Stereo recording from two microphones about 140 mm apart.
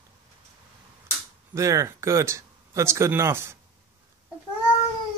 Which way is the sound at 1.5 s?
20° right (ahead or behind).